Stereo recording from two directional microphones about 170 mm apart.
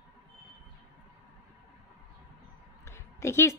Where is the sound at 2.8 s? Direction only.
15° left (ahead or behind).